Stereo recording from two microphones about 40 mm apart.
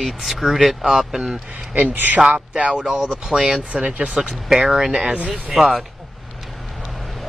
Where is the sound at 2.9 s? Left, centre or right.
Centre.